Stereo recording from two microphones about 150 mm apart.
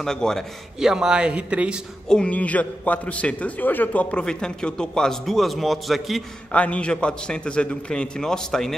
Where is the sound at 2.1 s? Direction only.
5° left (ahead or behind).